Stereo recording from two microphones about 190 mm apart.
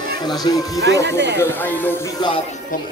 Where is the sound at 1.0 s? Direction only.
65° right (ahead or behind).